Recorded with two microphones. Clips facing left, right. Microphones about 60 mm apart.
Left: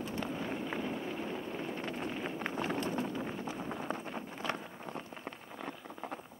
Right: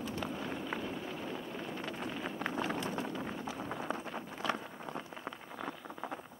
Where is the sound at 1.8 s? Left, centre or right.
Left.